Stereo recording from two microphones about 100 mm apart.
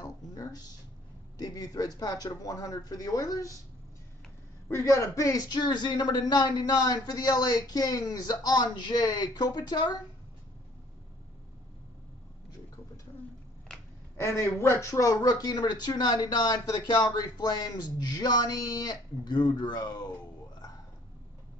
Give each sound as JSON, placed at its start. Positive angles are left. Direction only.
{"t": 0.0, "sound": "a sound", "side_deg": 40}
{"t": 1.4, "sound": "speech", "side_deg": 35}
{"t": 4.6, "sound": "speech", "side_deg": 30}
{"t": 14.2, "sound": "speech", "side_deg": 30}